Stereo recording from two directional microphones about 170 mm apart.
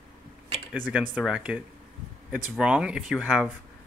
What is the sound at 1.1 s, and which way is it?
Speech, 5° right (ahead or behind).